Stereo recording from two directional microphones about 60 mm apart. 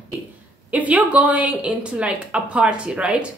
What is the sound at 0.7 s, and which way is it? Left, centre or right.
A woman's voice, right.